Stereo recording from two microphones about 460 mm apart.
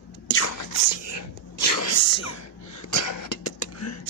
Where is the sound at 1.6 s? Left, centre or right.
Left.